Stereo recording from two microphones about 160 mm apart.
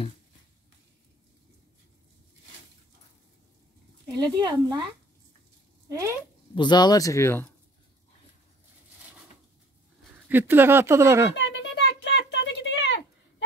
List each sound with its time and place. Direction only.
4.1 s speech: 25° right (ahead or behind)
5.9 s speech: 20° right (ahead or behind)
6.5 s speech: 30° left (ahead or behind)
10.2 s speech: 10° right (ahead or behind)
11.3 s a sound: 90° left